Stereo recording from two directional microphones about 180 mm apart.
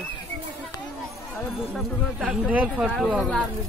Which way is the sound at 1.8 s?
Centre (ahead or behind).